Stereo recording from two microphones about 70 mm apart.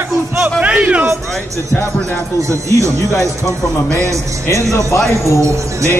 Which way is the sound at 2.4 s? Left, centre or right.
Right.